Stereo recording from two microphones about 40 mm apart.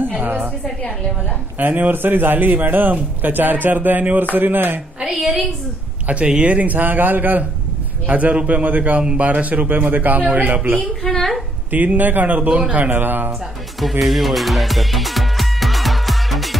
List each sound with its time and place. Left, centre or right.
0.2 s music: right
1.6 s a man's voice: right
5.0 s a woman's voice: centre
6.2 s speech: right
6.5 s a man's voice: right
8.1 s a man's voice: right
9.0 s a man's voice: right
12.9 s a man's voice: right
13.7 s music: centre